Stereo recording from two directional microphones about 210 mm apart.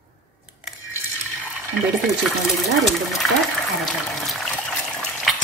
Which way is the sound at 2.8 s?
Centre (ahead or behind).